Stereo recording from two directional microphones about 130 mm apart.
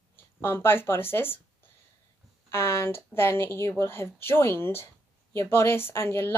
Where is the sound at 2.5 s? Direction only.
20° left (ahead or behind).